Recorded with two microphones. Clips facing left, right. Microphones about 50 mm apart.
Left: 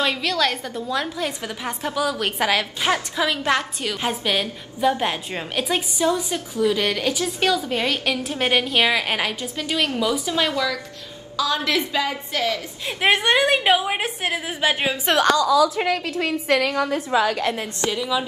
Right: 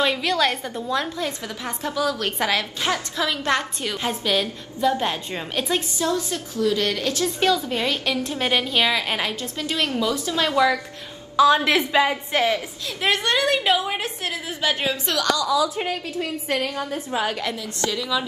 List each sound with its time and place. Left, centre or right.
0.0 s a woman's voice: centre
1.1 s a woman's voice: centre
7.2 s a woman's voice: centre
10.1 s a woman's voice: left
10.5 s a woman's voice: right
12.8 s a woman's voice: left
15.0 s a woman's voice: left
15.6 s a woman's voice: left